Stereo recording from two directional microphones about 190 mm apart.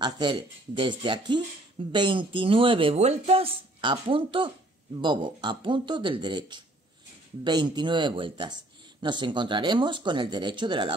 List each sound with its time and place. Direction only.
0.0 s speech: 25° right (ahead or behind)